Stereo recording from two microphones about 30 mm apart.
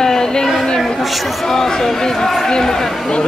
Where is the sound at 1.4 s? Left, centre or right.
Centre.